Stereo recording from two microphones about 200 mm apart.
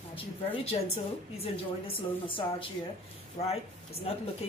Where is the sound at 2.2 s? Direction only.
25° left (ahead or behind).